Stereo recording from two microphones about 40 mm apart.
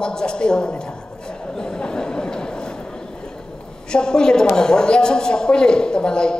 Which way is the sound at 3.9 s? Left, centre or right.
Centre.